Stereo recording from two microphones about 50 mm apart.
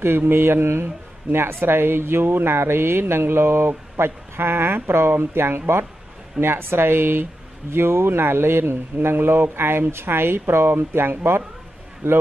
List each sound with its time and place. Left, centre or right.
0.0 s speech: right